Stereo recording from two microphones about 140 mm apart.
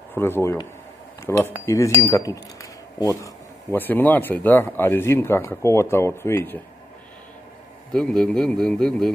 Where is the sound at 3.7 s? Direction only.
15° left (ahead or behind).